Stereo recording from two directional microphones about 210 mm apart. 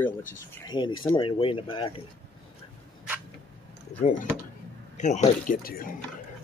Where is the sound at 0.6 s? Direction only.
20° left (ahead or behind).